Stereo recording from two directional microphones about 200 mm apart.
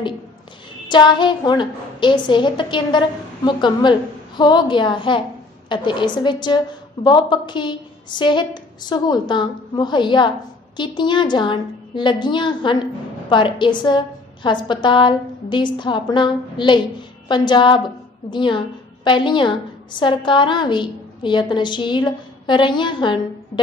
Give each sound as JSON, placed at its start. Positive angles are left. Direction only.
{"t": 0.8, "sound": "a woman's voice", "side_deg": 20}